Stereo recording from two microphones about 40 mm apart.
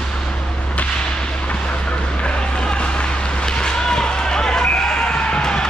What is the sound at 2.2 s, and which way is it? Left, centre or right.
Run, left.